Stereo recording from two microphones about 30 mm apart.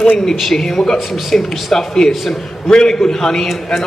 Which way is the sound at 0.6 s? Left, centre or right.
Centre.